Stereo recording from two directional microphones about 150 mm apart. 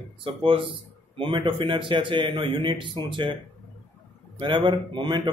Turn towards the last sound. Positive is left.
turn(degrees=-30)  # may be behind; listen again after turning